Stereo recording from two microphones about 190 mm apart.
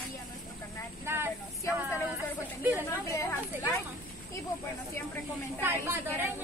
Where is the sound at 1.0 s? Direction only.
10° right (ahead or behind).